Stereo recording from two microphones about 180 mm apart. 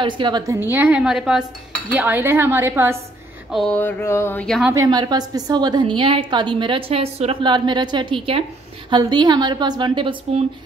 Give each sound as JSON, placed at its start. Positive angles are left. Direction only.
{"t": 0.0, "sound": "a woman's voice", "side_deg": -25}
{"t": 3.5, "sound": "speech", "side_deg": 5}
{"t": 4.7, "sound": "a woman's voice", "side_deg": -25}